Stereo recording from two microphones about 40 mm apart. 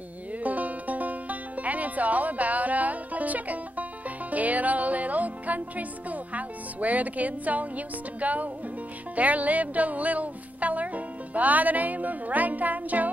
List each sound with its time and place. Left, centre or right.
0.4 s music: right